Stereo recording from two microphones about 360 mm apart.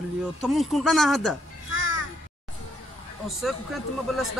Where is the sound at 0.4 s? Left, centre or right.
Centre.